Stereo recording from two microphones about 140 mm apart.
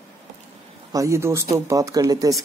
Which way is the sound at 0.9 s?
20° right (ahead or behind).